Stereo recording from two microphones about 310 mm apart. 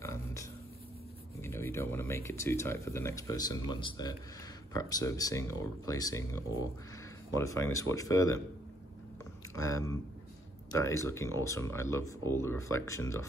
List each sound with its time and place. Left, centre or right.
0.0 s a sound: centre
1.4 s speech: centre
9.6 s speech: centre